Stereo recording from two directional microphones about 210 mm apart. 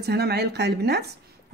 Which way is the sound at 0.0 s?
50° right (ahead or behind).